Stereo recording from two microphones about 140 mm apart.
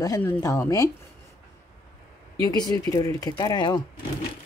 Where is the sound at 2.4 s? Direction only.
25° left (ahead or behind).